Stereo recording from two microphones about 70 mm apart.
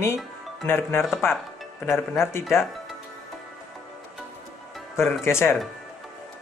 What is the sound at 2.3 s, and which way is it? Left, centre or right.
Speech, left.